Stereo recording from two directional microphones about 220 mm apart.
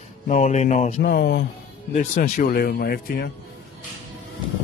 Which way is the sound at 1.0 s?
50° left (ahead or behind).